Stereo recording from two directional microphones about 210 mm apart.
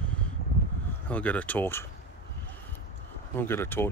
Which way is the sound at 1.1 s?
5° left (ahead or behind).